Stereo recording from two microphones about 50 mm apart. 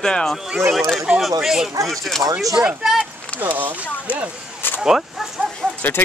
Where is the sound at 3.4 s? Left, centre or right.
Right.